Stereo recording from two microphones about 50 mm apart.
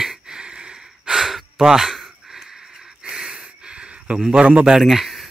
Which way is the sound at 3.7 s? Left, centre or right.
Right.